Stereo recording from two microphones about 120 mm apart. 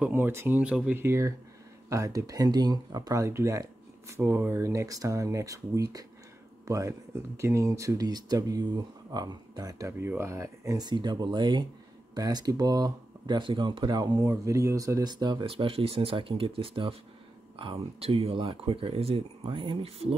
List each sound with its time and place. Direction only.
0.0 s speech: 15° right (ahead or behind)
0.9 s speech: 20° right (ahead or behind); by 15.5 s 40° right (ahead or behind)
15.5 s speech: 55° right (ahead or behind)
18.0 s speech: 55° right (ahead or behind)